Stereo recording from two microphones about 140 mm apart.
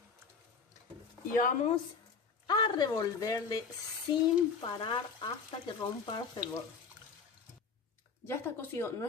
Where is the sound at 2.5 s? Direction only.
30° left (ahead or behind).